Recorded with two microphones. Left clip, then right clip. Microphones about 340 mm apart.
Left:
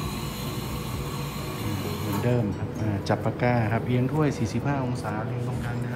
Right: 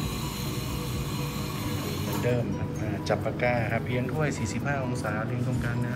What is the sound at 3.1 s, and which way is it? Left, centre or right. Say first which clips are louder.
Speech: left 1 dB; centre.